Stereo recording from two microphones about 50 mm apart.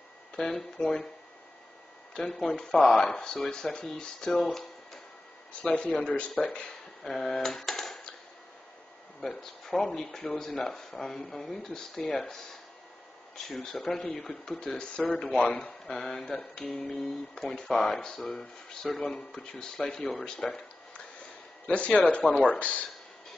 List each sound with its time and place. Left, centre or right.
0.4 s speech: centre
0.7 s speech: centre
2.1 s speech: centre
4.5 s a sound: centre
5.5 s speech: left; by 7.3 s centre
7.3 s typewriter: centre
9.2 s speech: centre
13.5 s speech: centre
15.0 s speech: left
15.3 s speech: centre
18.2 s speech: left
18.9 s speech: centre
21.6 s speech: left